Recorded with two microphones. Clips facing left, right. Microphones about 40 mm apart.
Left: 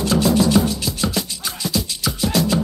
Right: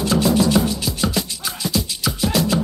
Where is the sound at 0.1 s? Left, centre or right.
Centre.